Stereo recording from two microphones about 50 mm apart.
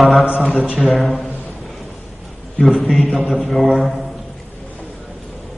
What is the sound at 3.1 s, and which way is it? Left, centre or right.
Mantra, centre.